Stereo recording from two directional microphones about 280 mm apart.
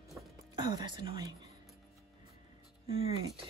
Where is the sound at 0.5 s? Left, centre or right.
Centre.